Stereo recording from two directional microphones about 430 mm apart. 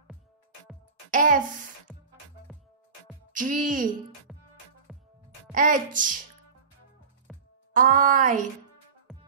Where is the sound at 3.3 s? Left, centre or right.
Centre.